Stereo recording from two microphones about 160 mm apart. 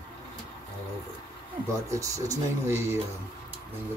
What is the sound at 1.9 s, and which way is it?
Speech, 20° right (ahead or behind).